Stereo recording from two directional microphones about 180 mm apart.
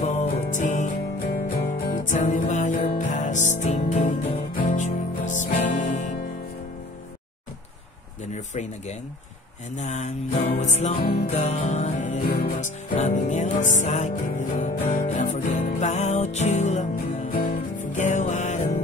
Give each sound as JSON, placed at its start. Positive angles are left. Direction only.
{"t": 0.0, "sound": "music", "side_deg": 40}
{"t": 1.9, "sound": "music", "side_deg": 45}
{"t": 9.8, "sound": "music", "side_deg": 40}